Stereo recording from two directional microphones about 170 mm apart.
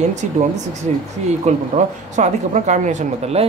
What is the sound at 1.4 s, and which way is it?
Speech, 45° right (ahead or behind).